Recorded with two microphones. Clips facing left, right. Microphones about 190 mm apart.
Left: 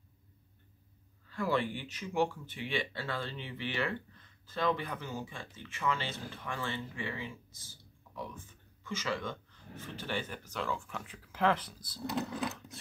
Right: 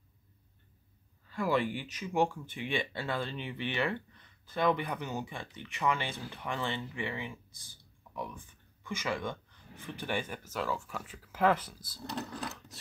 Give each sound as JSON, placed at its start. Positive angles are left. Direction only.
{"t": 1.3, "sound": "speech", "side_deg": -10}
{"t": 11.6, "sound": "speech", "side_deg": -50}